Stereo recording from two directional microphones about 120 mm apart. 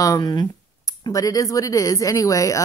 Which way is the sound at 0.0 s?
30° left (ahead or behind).